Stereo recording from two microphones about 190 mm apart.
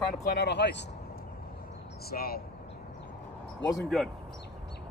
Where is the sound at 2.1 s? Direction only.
50° left (ahead or behind).